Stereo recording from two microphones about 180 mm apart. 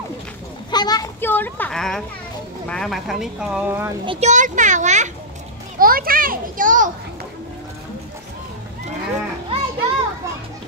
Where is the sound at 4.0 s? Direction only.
30° right (ahead or behind).